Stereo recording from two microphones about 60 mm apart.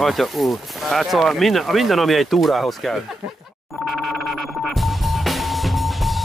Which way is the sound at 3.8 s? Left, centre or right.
Centre.